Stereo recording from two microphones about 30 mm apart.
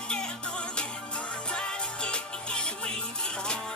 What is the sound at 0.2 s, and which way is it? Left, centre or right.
Music, left.